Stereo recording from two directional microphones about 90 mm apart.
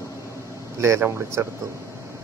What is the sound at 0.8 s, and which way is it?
Speech, 30° right (ahead or behind).